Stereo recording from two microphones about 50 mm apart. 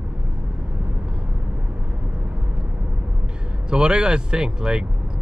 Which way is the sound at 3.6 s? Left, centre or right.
Centre.